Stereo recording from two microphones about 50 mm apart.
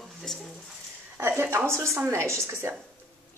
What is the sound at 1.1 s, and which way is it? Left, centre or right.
Speech, right.